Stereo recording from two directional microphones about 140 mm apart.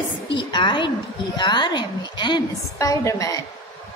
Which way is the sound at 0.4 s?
35° left (ahead or behind).